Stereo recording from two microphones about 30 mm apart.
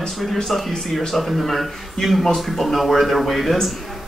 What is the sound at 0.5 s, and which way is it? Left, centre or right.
Speech, centre.